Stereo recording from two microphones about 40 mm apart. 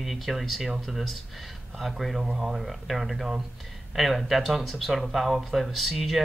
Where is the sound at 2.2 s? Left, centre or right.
Centre.